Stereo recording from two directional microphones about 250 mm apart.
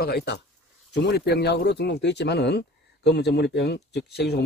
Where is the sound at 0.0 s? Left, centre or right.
Left.